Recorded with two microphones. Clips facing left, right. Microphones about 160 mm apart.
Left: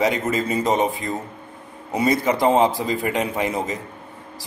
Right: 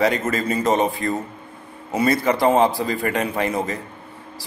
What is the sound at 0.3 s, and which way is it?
A man's voice, 15° left (ahead or behind).